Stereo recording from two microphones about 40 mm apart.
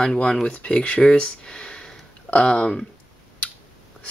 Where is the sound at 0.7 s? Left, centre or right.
Left.